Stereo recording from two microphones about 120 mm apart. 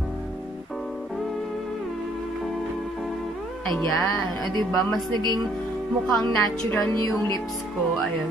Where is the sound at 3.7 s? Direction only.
20° left (ahead or behind).